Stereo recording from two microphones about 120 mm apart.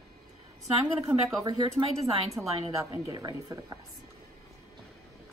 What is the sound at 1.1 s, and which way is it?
Speech, 15° right (ahead or behind).